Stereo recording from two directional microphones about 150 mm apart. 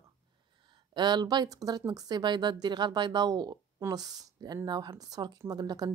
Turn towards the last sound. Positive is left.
turn(degrees=-25)  # may be behind; listen again after turning